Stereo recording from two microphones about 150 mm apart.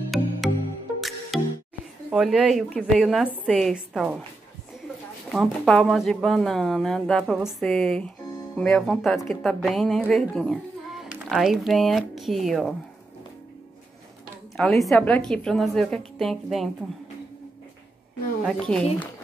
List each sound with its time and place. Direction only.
0.1 s music: centre (ahead or behind)
1.3 s music: centre (ahead or behind)
2.0 s a woman's voice: 5° right (ahead or behind)
5.3 s a woman's voice: centre (ahead or behind)
14.6 s a woman's voice: centre (ahead or behind)
18.4 s a woman's voice: 5° left (ahead or behind)